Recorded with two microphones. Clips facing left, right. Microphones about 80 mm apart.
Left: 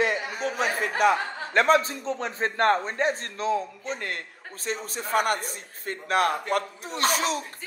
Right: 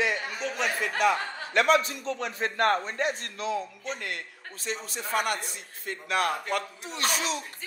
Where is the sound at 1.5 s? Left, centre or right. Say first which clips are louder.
Left 2 dB; left.